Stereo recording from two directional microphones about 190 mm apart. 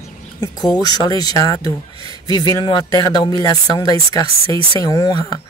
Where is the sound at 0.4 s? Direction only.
20° left (ahead or behind).